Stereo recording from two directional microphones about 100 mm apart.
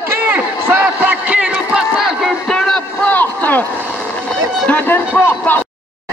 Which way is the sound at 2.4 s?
5° left (ahead or behind).